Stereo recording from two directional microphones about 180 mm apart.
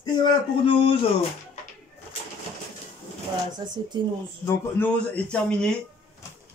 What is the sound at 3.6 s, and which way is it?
Speech, 25° right (ahead or behind).